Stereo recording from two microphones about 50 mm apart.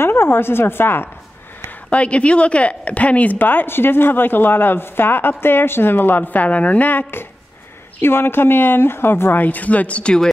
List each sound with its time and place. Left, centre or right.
0.0 s a woman's voice: left
1.9 s speech: left